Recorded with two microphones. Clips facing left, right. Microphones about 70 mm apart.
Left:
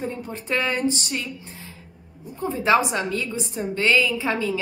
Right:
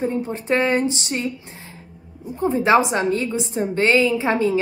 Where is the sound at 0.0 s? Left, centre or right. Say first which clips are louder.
Right 7 dB; right.